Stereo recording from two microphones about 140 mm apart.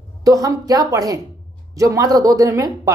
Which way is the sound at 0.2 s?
25° right (ahead or behind).